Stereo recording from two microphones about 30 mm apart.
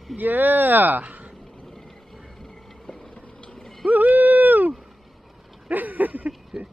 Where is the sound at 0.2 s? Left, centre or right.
Right.